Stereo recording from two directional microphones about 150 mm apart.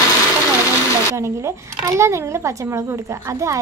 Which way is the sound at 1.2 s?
20° right (ahead or behind).